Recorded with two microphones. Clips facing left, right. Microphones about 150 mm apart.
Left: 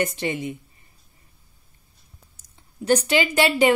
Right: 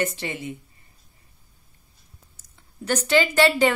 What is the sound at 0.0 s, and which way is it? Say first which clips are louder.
Speech: left 3 dB; 15° left (ahead or behind).